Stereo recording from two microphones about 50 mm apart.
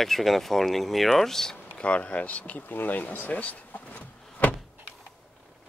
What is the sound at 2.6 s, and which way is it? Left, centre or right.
Speech, left.